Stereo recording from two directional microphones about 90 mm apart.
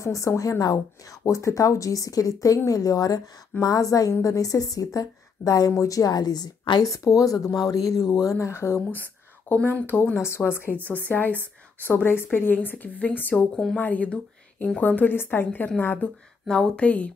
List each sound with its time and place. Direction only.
0.0 s a woman's voice: 35° left (ahead or behind); by 16.1 s 20° left (ahead or behind)
16.4 s speech: 10° left (ahead or behind)